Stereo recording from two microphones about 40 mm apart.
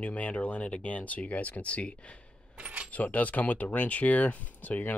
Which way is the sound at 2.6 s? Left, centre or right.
Right.